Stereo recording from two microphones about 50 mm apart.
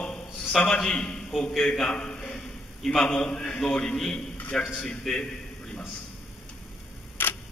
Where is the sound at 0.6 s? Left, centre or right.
Centre.